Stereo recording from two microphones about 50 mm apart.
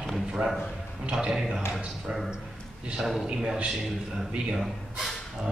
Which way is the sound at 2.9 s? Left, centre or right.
Centre.